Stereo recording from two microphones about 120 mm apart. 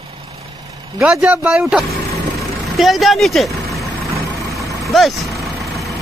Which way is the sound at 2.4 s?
Centre (ahead or behind).